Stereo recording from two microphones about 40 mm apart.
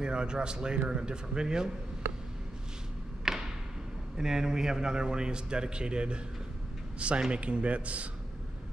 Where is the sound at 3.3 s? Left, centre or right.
Centre.